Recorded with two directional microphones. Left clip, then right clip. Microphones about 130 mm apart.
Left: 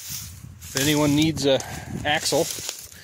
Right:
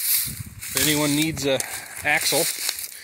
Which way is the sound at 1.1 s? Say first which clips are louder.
Left 2 dB; 50° left (ahead or behind).